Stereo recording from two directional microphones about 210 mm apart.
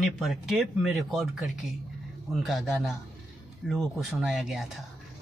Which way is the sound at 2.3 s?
Centre (ahead or behind).